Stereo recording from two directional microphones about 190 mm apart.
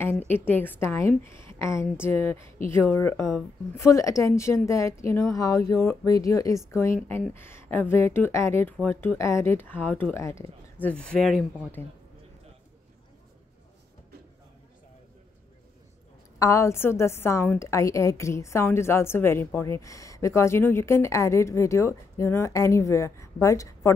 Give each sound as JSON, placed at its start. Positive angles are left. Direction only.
{"t": 0.3, "sound": "a woman's voice", "side_deg": 10}
{"t": 16.3, "sound": "a woman's voice", "side_deg": 15}